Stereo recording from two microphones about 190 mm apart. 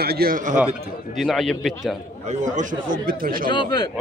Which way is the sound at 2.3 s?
40° right (ahead or behind).